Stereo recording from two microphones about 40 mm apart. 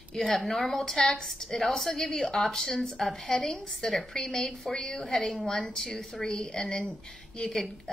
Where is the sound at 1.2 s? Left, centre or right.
Centre.